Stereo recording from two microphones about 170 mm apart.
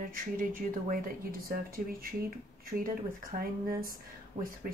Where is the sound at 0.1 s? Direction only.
55° right (ahead or behind).